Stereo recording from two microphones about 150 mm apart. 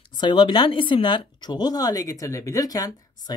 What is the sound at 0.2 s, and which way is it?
Speech, 30° left (ahead or behind).